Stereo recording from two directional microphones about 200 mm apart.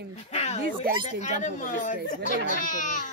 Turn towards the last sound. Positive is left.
turn(degrees=40)  # may be behind; listen again after turning